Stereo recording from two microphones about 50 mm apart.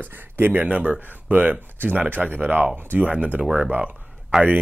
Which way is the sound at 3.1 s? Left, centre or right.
Right.